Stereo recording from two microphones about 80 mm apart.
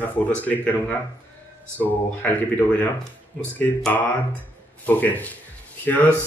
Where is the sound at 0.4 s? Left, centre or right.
Centre.